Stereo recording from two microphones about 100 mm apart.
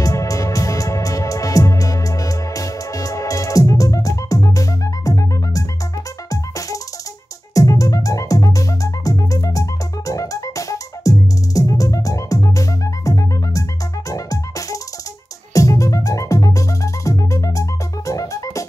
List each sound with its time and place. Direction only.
0.0 s music: 35° left (ahead or behind)